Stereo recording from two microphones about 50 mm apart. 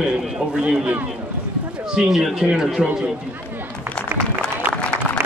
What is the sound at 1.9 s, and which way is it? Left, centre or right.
Speech, centre.